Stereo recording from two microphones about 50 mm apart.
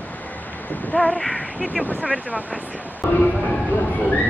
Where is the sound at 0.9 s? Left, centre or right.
Left.